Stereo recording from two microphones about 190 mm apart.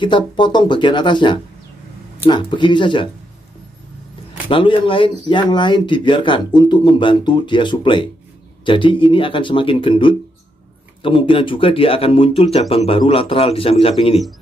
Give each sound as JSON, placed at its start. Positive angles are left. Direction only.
{"t": 0.0, "sound": "speech", "side_deg": 25}
{"t": 4.5, "sound": "speech", "side_deg": 25}